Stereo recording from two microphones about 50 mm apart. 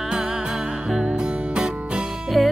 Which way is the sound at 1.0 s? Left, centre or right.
Centre.